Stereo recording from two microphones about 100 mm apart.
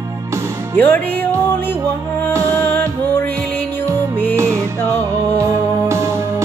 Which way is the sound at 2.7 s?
20° left (ahead or behind).